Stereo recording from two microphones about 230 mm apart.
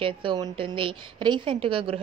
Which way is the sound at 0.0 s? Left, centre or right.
Right.